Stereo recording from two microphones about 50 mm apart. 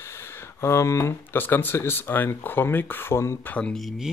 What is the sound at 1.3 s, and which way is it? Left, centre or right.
Speech, left.